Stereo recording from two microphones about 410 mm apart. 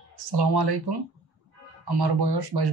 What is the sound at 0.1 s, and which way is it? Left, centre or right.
Speech, right.